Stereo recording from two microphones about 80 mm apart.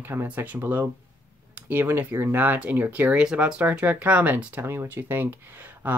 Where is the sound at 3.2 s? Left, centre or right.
Centre.